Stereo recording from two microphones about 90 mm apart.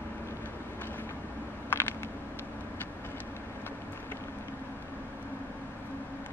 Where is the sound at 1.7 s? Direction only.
25° left (ahead or behind).